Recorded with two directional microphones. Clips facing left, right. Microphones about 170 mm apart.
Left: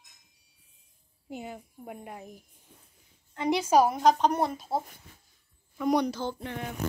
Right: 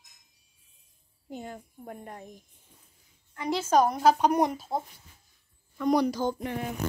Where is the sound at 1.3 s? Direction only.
5° left (ahead or behind).